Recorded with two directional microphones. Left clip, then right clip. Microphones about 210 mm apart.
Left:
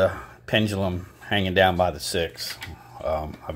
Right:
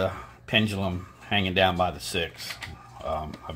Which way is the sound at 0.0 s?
30° left (ahead or behind).